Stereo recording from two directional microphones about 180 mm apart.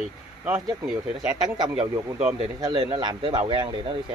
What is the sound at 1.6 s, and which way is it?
Speech, 25° right (ahead or behind).